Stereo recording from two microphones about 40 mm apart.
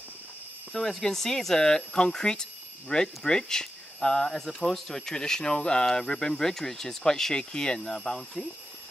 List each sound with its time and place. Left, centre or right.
0.7 s speech: centre